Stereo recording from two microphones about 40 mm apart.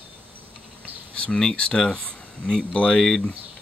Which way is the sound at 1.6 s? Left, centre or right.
Left.